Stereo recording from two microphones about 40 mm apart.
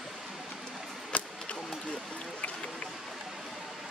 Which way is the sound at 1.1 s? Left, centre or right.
Left.